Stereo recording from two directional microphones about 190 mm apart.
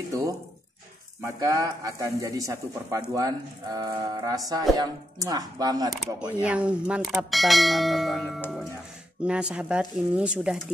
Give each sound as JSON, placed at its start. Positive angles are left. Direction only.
{"t": 0.1, "sound": "speech", "side_deg": -15}
{"t": 1.4, "sound": "speech", "side_deg": -15}
{"t": 5.9, "sound": "speech", "side_deg": -5}